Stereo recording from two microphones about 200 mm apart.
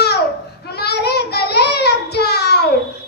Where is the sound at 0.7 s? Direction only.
55° left (ahead or behind).